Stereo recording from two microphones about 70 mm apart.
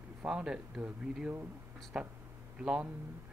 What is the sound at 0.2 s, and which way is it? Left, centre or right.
Speech, centre.